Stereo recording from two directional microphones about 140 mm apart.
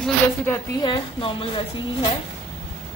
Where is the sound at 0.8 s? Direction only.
40° left (ahead or behind).